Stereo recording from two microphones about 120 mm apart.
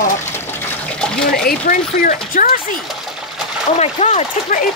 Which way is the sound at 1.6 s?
90° left.